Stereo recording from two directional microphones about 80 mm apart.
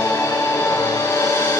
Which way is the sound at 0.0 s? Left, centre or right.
Left.